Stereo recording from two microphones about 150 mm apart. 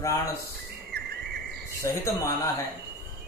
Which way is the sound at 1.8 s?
20° left (ahead or behind).